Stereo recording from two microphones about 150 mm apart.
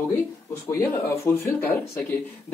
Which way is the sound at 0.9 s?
15° left (ahead or behind).